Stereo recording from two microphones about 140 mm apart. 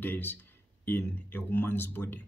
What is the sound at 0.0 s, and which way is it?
A man's voice, 15° left (ahead or behind).